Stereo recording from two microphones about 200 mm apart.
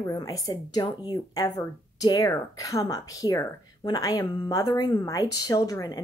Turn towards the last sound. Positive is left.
turn(degrees=15)  # may be behind; listen again after turning